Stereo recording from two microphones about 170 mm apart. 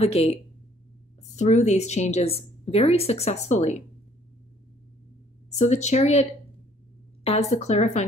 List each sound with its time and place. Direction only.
0.0 s a woman's voice: 35° left (ahead or behind)
5.5 s a woman's voice: 40° left (ahead or behind)
7.2 s a woman's voice: 40° left (ahead or behind)